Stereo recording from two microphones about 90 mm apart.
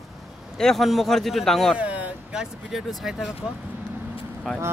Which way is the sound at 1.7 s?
15° right (ahead or behind).